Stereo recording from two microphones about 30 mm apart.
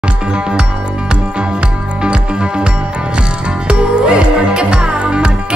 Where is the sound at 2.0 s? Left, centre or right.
Right.